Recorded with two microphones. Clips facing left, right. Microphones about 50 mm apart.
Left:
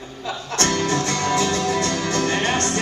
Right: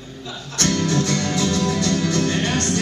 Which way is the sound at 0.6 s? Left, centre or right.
Left.